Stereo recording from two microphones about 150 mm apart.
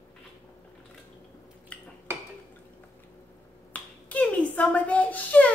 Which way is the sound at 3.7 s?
10° left (ahead or behind).